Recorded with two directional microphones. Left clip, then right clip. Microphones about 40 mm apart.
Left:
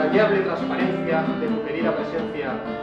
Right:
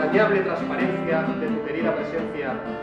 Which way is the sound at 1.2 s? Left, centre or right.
Centre.